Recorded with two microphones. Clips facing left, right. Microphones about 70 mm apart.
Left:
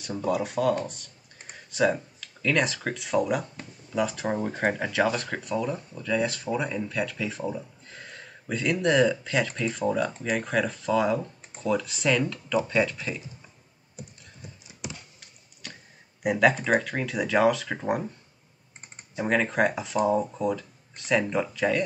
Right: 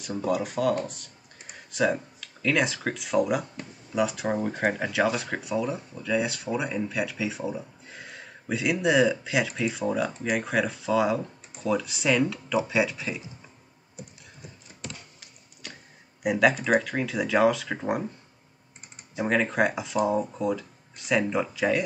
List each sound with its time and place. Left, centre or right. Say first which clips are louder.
0.0 s speech: even; centre
14.7 s a sound: left 2 dB; centre
16.2 s speech: even; centre
19.1 s speech: even; centre